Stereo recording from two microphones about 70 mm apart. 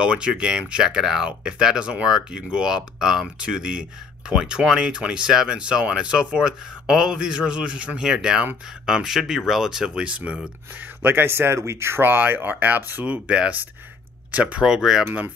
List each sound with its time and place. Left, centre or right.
0.0 s speech: centre
11.0 s speech: right; by 15.0 s centre